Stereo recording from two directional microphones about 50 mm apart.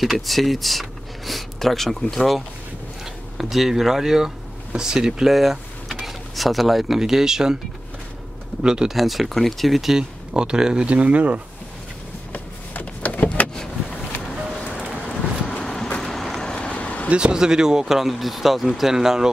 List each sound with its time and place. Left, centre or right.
0.0 s speech: centre
8.6 s speech: centre
8.9 s speech: centre
10.9 s speech: right
12.3 s a sound: left
13.6 s vehicle: centre
14.3 s music: centre
15.0 s a sound: centre
16.0 s vehicle: centre
16.3 s vehicle: centre
16.7 s vehicle: left
17.1 s speech: centre